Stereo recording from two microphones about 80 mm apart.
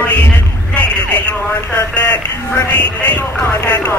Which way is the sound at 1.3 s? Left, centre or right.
Left.